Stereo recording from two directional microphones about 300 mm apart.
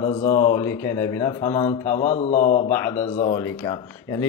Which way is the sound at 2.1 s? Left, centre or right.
Left.